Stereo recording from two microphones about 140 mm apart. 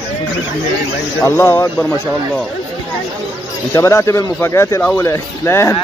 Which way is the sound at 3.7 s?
20° left (ahead or behind).